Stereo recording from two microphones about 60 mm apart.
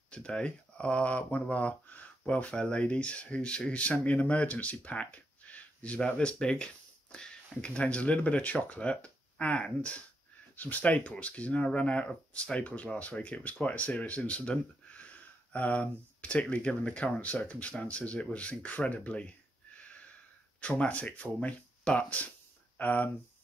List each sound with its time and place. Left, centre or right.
0.1 s speech: centre
20.6 s speech: left